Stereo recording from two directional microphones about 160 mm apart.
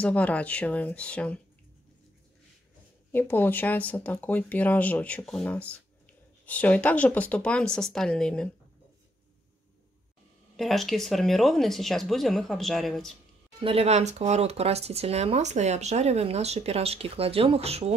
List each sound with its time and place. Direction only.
0.0 s speech: 10° left (ahead or behind)
3.1 s speech: 10° left (ahead or behind)
10.5 s speech: centre (ahead or behind)
13.6 s speech: 35° right (ahead or behind)